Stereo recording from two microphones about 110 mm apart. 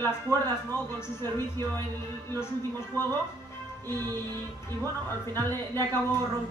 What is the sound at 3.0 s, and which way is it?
Music, 25° left (ahead or behind).